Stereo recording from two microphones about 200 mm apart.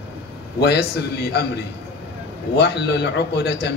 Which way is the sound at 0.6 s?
55° left (ahead or behind).